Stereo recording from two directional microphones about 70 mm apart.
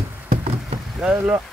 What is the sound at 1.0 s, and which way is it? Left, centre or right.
Speech, centre.